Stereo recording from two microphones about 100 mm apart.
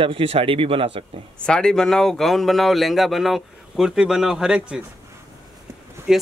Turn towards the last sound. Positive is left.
turn(degrees=-5)  # may be behind; listen again after turning